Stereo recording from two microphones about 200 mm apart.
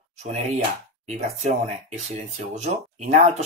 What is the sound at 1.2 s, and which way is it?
Speech, 35° right (ahead or behind).